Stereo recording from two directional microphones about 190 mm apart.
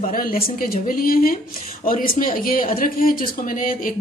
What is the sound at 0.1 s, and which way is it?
A woman's voice, 50° left (ahead or behind).